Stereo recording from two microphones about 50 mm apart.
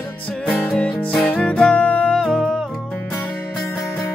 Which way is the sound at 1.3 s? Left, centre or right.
Centre.